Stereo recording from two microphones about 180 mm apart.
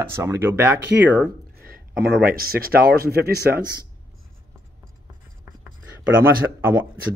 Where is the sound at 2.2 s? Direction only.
55° right (ahead or behind).